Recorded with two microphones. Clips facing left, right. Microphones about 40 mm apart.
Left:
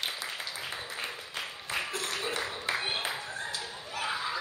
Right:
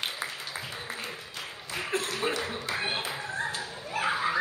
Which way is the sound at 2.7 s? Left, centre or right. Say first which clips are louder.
Left 1 dB; left.